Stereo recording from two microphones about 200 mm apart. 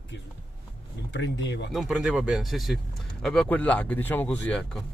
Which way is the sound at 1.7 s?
Centre (ahead or behind).